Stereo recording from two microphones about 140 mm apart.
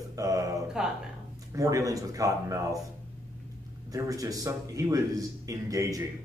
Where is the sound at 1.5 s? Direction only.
25° right (ahead or behind).